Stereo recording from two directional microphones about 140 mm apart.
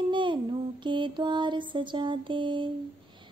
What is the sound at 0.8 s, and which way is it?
Mantra, 35° right (ahead or behind).